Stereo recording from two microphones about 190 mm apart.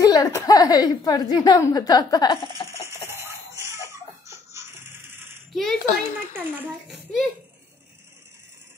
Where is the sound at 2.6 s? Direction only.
15° right (ahead or behind).